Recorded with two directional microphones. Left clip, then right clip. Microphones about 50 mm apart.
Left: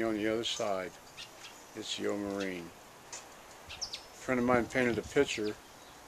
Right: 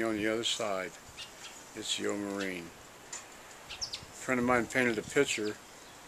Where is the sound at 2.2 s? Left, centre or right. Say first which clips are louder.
Even; left.